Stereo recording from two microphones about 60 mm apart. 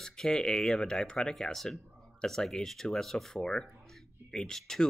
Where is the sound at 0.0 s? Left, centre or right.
Centre.